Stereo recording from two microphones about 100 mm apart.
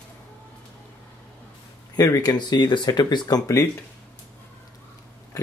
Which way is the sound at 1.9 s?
40° left (ahead or behind).